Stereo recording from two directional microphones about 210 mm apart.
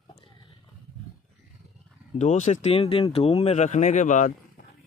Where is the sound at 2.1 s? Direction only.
35° left (ahead or behind).